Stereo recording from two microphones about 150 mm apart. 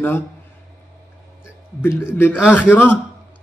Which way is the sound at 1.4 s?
15° left (ahead or behind).